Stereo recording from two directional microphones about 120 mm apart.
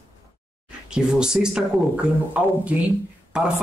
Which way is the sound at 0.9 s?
5° right (ahead or behind).